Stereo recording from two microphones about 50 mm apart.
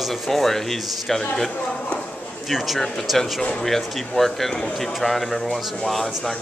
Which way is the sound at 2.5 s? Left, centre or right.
Centre.